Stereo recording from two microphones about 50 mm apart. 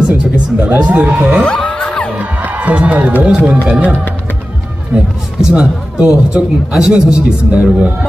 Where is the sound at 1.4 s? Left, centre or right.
Left.